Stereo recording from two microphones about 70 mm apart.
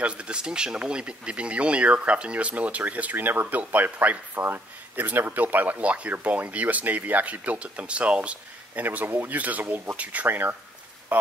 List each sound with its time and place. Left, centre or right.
0.0 s speech: centre